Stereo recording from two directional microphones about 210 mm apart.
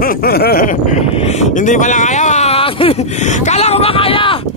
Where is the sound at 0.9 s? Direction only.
35° left (ahead or behind).